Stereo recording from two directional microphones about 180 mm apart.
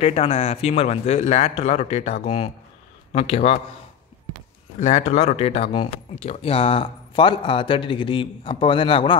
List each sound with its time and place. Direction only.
0.0 s speech: 35° left (ahead or behind)
4.7 s speech: 40° left (ahead or behind)